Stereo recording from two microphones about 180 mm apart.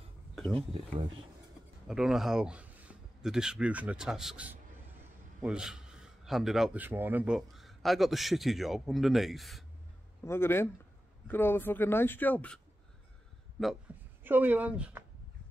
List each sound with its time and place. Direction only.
0.6 s speech: 30° right (ahead or behind)
1.9 s a man's voice: centre (ahead or behind)
10.2 s speech: 15° left (ahead or behind)
13.6 s a man's voice: 5° left (ahead or behind)
14.2 s speech: 10° right (ahead or behind)